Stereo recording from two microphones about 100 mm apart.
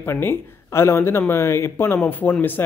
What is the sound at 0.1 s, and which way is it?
Speech, 25° left (ahead or behind).